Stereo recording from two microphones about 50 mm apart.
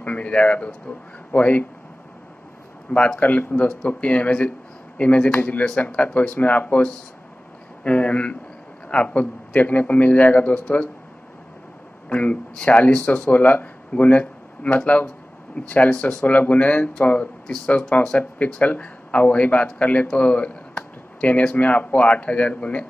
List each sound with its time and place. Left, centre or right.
0.0 s speech: left
2.9 s a man's voice: left
7.8 s speech: left
12.1 s speech: left
20.1 s a sound: left
21.5 s speech: left